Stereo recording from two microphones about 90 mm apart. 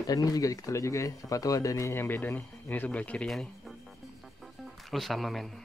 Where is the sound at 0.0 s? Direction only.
45° left (ahead or behind); by 3.3 s 15° left (ahead or behind).